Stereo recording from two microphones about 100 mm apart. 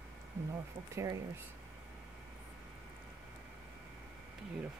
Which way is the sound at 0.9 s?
30° right (ahead or behind).